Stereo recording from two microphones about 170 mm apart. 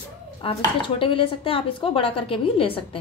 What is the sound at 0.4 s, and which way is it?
Speech, 30° left (ahead or behind).